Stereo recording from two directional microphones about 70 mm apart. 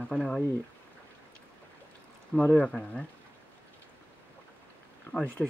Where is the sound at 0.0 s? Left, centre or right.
Centre.